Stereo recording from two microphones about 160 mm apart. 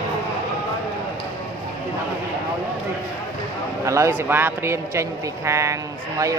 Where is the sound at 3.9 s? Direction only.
15° right (ahead or behind).